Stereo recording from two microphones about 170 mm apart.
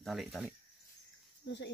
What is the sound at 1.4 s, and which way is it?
Speech, 90° left.